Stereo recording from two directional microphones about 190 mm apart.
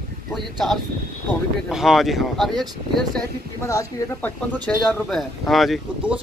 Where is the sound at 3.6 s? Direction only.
15° left (ahead or behind).